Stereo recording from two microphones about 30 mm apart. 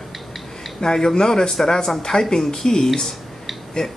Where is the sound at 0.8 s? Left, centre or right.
Centre.